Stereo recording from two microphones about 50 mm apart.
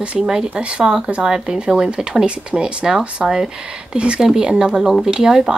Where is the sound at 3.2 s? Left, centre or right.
Centre.